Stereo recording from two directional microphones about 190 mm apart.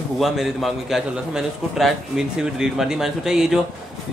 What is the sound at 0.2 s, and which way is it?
A man's voice, centre (ahead or behind).